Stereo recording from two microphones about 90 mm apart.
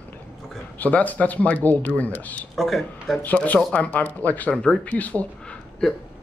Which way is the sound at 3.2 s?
15° left (ahead or behind).